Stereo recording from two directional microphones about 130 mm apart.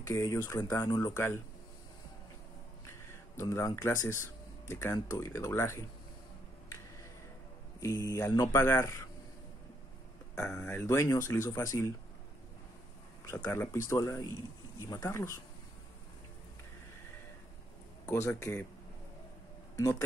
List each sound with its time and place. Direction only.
0.0 s speech: 25° left (ahead or behind)
3.3 s speech: 20° left (ahead or behind)
7.8 s speech: 25° left (ahead or behind)
10.6 s speech: 20° left (ahead or behind)
13.3 s speech: 20° left (ahead or behind)
18.2 s speech: 20° left (ahead or behind)